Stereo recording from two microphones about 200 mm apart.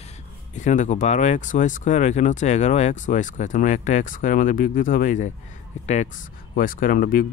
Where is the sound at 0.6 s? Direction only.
35° left (ahead or behind).